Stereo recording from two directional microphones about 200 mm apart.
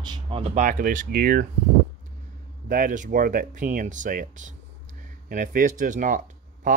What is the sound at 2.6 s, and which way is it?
Speech, 40° right (ahead or behind).